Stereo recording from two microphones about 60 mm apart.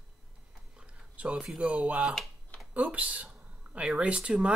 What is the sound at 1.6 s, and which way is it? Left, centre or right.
Speech, centre.